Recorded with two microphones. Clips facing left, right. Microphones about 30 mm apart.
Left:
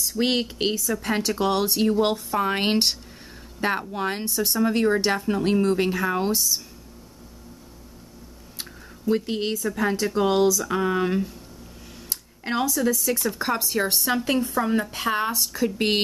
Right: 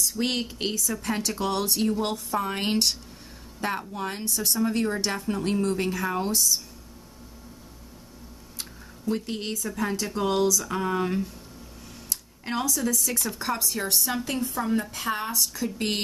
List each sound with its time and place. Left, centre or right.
0.2 s speech: centre
4.3 s speech: centre
8.5 s a sound: centre
9.7 s speech: centre
12.1 s a sound: centre
13.1 s speech: centre
14.7 s speech: left